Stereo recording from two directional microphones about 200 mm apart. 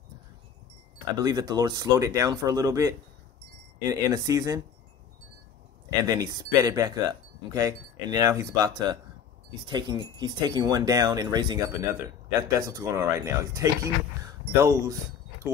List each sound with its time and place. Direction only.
1.2 s speech: 20° right (ahead or behind)
6.0 s speech: 20° right (ahead or behind)